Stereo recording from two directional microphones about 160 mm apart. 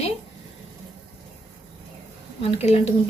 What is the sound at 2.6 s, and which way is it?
Speech, 40° left (ahead or behind).